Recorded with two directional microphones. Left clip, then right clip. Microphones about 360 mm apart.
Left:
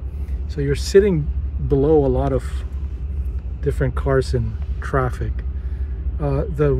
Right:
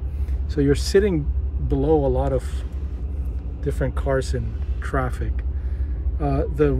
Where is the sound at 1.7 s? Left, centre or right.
Centre.